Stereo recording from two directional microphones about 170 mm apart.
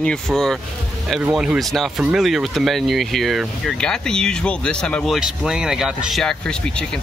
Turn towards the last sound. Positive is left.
turn(degrees=5)  # may be behind; listen again after turning